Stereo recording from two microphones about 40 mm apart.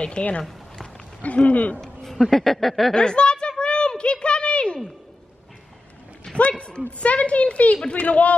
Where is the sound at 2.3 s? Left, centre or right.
Centre.